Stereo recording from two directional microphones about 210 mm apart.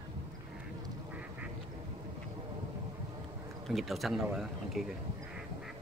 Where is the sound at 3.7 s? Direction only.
Centre (ahead or behind).